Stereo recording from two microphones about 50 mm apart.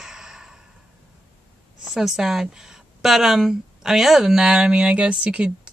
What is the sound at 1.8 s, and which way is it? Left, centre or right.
Speech, centre.